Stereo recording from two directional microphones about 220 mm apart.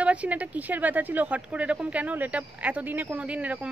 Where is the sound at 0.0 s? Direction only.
5° right (ahead or behind).